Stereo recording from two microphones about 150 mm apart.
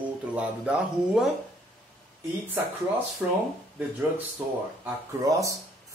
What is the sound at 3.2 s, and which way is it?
Speech, 10° right (ahead or behind).